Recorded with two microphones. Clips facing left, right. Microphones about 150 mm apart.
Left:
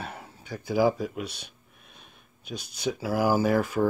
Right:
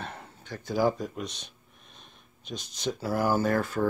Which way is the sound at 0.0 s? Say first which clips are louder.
Left 1 dB; 5° left (ahead or behind).